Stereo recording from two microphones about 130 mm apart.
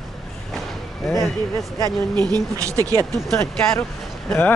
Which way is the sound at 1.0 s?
Centre (ahead or behind).